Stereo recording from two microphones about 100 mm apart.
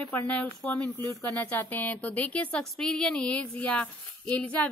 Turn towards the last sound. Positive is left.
turn(degrees=10)  # may be behind; listen again after turning